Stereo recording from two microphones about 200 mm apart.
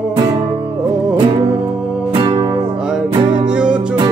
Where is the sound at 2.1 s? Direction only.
25° right (ahead or behind).